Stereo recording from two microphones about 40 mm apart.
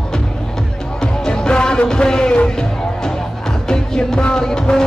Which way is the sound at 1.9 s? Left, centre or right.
Centre.